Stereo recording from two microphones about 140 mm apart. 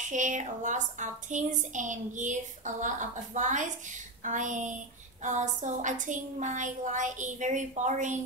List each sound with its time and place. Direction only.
0.1 s a woman's voice: 60° right (ahead or behind)